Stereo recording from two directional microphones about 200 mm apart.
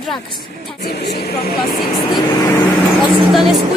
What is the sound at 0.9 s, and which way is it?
Speech, 50° left (ahead or behind).